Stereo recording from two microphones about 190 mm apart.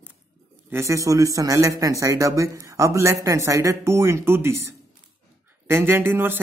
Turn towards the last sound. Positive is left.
turn(degrees=-10)  # may be behind; listen again after turning